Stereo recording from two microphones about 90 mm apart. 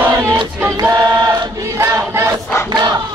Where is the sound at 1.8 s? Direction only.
30° right (ahead or behind).